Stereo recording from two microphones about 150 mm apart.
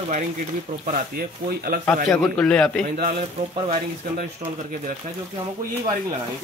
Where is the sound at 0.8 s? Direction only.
80° right.